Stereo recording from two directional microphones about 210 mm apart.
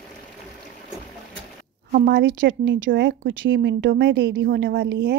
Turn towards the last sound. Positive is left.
turn(degrees=-50)  # may be behind; listen again after turning